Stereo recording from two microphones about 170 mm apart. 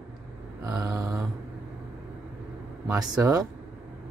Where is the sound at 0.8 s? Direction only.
20° right (ahead or behind).